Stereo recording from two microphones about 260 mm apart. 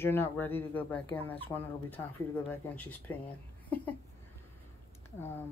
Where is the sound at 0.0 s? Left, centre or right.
Centre.